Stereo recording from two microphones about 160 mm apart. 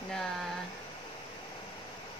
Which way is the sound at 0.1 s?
Centre (ahead or behind).